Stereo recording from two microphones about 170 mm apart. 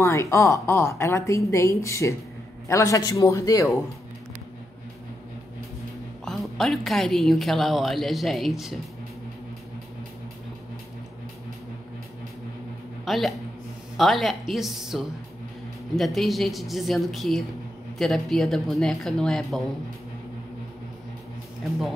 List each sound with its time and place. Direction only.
0.0 s a woman's voice: 15° left (ahead or behind)
6.2 s a woman's voice: centre (ahead or behind)
13.0 s a woman's voice: centre (ahead or behind)